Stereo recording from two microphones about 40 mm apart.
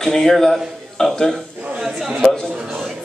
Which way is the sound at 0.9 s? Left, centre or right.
Centre.